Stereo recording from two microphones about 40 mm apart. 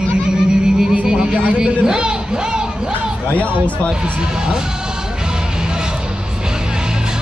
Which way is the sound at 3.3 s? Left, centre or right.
Left.